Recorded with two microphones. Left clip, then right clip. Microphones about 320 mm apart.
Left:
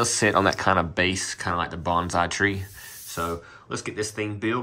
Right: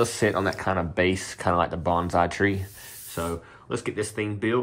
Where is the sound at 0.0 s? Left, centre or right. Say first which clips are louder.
Left 3 dB; centre.